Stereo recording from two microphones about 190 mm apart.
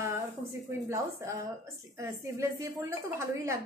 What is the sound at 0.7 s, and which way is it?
Speech, 15° right (ahead or behind).